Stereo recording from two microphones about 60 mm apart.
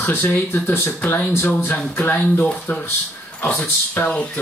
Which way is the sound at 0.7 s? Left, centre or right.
Left.